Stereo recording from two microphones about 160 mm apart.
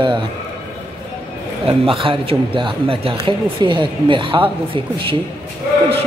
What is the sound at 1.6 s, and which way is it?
A man's voice, 35° right (ahead or behind).